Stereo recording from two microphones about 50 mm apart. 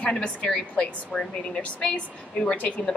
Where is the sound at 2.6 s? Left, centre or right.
Left.